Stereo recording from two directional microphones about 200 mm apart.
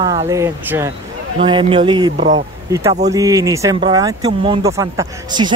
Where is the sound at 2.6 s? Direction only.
15° right (ahead or behind).